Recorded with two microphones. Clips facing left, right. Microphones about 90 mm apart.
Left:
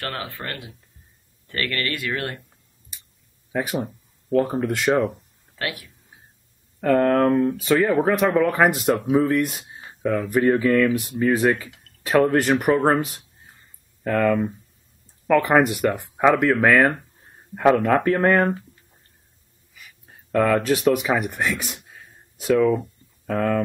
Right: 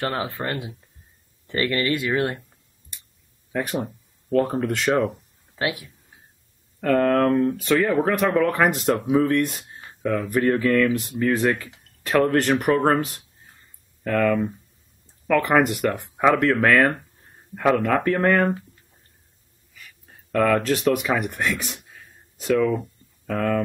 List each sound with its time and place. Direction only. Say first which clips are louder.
0.0 s speech: right 5 dB; 20° right (ahead or behind)
3.5 s speech: left 1 dB; centre (ahead or behind)
5.6 s speech: right 4 dB; 20° right (ahead or behind)
6.8 s speech: left 1 dB; 5° left (ahead or behind)
19.7 s speech: even; 10° left (ahead or behind)